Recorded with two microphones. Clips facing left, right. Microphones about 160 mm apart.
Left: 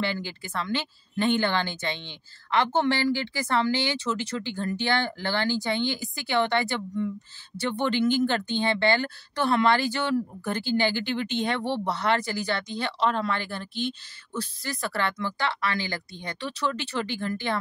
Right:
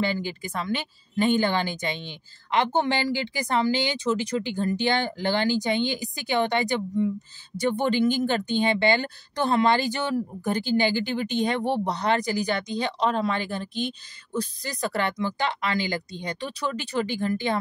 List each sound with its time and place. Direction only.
0.0 s speech: 15° right (ahead or behind)